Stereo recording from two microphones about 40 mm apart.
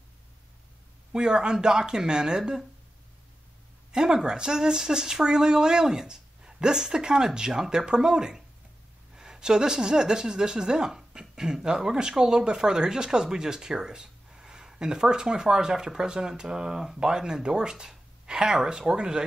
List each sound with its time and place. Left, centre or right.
1.1 s speech: centre
3.9 s speech: centre